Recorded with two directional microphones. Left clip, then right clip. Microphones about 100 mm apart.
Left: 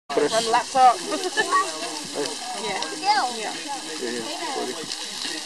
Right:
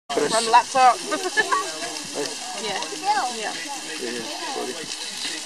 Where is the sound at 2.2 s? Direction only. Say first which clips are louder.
Even; 35° right (ahead or behind).